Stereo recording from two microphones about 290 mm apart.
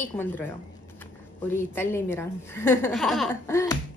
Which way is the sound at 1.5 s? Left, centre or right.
Centre.